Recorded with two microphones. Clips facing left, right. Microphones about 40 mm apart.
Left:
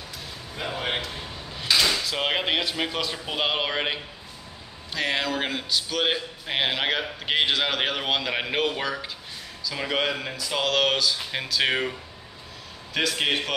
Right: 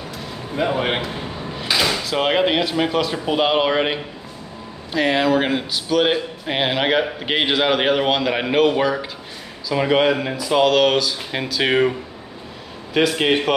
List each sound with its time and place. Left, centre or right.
0.6 s a sound: right
2.0 s speech: centre
12.9 s speech: centre